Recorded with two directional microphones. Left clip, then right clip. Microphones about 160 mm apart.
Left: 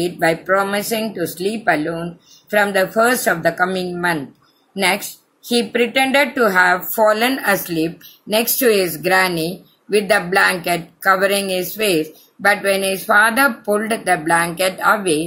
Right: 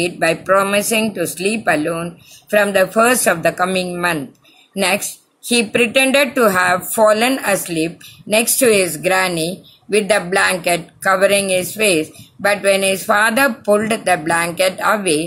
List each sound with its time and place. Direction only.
0.0 s a woman's voice: 35° right (ahead or behind)